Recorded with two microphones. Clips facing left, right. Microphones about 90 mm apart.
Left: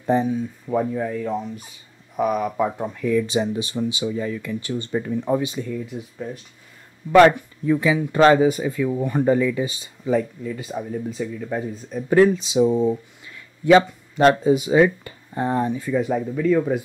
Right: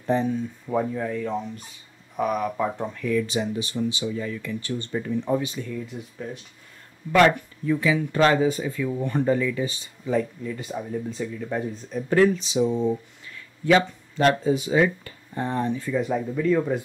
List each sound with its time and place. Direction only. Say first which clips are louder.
0.0 s speech: left 3 dB; 15° left (ahead or behind)
7.6 s speech: left 3 dB; 20° left (ahead or behind)
13.7 s speech: left 5 dB; 25° left (ahead or behind); by 16.8 s centre (ahead or behind)